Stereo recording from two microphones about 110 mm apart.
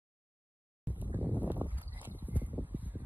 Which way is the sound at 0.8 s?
15° right (ahead or behind).